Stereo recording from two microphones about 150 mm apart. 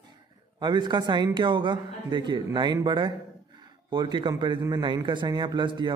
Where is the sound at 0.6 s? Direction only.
30° right (ahead or behind).